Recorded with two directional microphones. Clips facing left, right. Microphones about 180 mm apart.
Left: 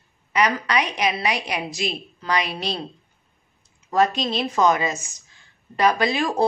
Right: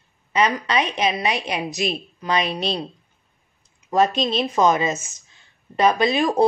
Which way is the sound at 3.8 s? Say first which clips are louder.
Right 1 dB; 20° right (ahead or behind).